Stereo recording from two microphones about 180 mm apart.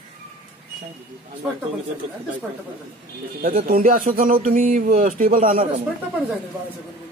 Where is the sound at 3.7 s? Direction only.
50° right (ahead or behind).